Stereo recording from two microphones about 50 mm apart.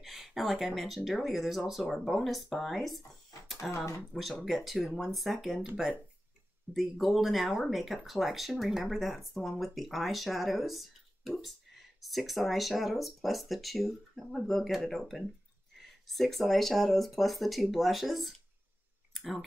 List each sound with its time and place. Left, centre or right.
0.0 s speech: centre
3.7 s speech: left
4.1 s speech: centre
6.7 s speech: centre
19.1 s clicking: centre